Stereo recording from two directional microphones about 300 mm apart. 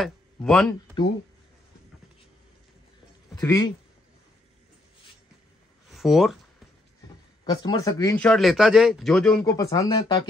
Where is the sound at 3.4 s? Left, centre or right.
Centre.